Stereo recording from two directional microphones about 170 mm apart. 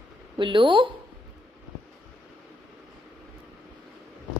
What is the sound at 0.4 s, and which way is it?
Speech, 30° right (ahead or behind).